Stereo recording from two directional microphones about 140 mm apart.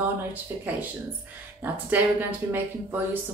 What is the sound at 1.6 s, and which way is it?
Speech, 15° right (ahead or behind).